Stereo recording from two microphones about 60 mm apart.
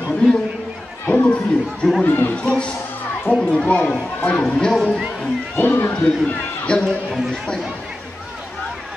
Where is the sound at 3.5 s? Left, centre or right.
Centre.